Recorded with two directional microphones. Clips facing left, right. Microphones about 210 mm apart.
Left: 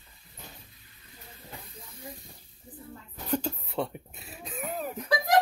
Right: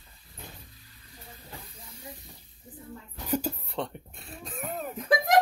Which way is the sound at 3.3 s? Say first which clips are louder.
Right 1 dB; 10° right (ahead or behind).